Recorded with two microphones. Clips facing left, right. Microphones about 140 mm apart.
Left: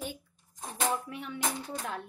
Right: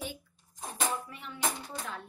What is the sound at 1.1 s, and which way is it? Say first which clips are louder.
Music: left 6 dB; 65° left (ahead or behind).